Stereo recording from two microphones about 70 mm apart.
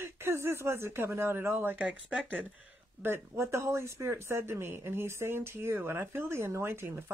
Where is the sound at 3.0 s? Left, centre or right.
Right.